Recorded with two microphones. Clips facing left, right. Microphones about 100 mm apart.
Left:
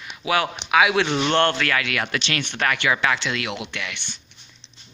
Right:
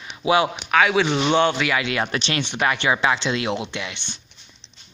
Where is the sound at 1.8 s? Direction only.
25° right (ahead or behind).